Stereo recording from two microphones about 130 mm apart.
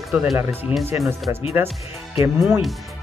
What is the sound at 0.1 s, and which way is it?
Speech, 10° right (ahead or behind).